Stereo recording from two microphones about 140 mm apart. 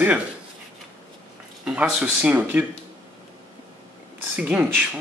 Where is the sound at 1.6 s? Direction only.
5° right (ahead or behind).